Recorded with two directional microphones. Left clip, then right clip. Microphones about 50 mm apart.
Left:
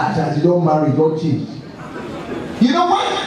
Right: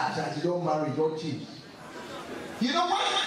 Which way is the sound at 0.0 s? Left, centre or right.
Centre.